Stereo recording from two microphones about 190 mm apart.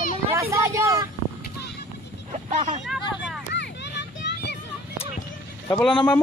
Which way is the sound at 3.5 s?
65° left (ahead or behind).